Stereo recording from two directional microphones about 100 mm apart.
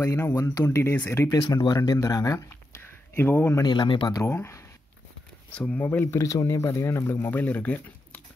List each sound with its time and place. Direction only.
0.0 s speech: 30° left (ahead or behind)
1.8 s speech: 35° left (ahead or behind)
2.8 s a sound: 20° left (ahead or behind)
3.6 s speech: 55° left (ahead or behind)
4.1 s speech: 25° left (ahead or behind)
5.5 s speech: 10° left (ahead or behind)
6.1 s speech: 35° left (ahead or behind); by 8.2 s 15° left (ahead or behind)